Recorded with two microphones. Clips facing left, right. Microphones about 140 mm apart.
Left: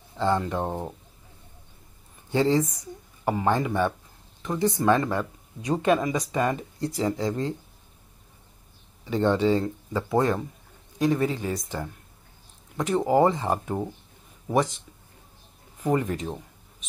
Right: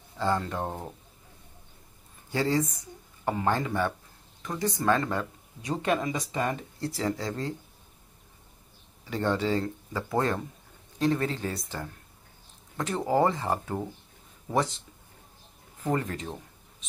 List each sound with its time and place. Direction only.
0.2 s speech: 20° left (ahead or behind)
2.3 s speech: 20° left (ahead or behind)
9.0 s speech: 20° left (ahead or behind)
15.8 s speech: 15° left (ahead or behind)